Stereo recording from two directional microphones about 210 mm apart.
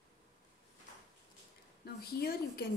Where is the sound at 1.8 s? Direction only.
45° left (ahead or behind).